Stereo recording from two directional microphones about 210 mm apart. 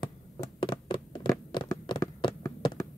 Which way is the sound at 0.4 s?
20° left (ahead or behind).